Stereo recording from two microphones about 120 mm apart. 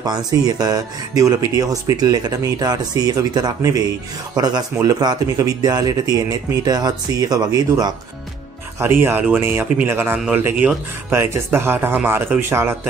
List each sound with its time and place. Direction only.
0.0 s speech: 35° right (ahead or behind)
8.7 s speech: 20° right (ahead or behind)